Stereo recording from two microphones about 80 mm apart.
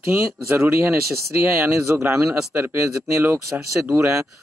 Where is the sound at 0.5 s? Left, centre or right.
Right.